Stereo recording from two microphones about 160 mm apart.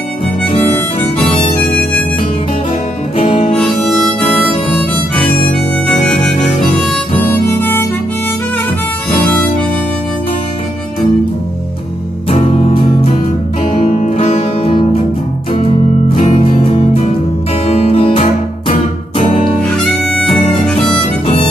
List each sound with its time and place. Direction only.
3.2 s music: 40° left (ahead or behind)
3.5 s harmonica: centre (ahead or behind)
6.6 s harmonica: centre (ahead or behind)
7.4 s harmonica: 15° left (ahead or behind)
12.3 s music: 40° left (ahead or behind)
16.3 s music: 35° left (ahead or behind)
19.7 s harmonica: 5° left (ahead or behind)
21.0 s harmonica: 30° left (ahead or behind)